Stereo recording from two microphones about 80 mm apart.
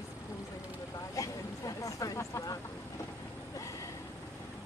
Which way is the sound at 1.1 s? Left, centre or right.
Left.